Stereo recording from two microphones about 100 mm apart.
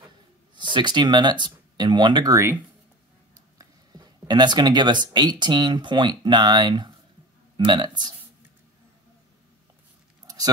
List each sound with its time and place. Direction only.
0.6 s speech: 50° right (ahead or behind)
3.5 s speech: 40° right (ahead or behind)
10.2 s a sound: 40° right (ahead or behind)